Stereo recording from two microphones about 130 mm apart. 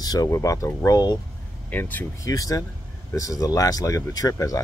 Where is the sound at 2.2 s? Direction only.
25° left (ahead or behind).